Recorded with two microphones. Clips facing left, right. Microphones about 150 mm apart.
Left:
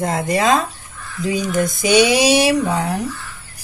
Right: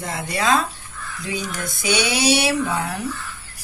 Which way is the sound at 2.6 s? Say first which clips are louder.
Left 4 dB; 40° left (ahead or behind).